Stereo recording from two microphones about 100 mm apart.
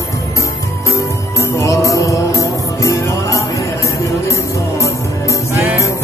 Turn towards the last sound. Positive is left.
turn(degrees=-20)  # may be behind; listen again after turning